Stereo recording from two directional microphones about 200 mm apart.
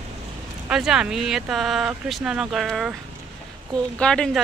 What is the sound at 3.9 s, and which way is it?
Speech, 5° left (ahead or behind).